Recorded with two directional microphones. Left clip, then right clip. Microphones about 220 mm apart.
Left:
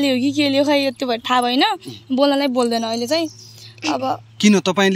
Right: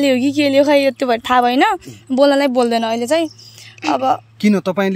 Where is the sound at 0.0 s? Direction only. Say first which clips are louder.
Right 3 dB; 45° right (ahead or behind).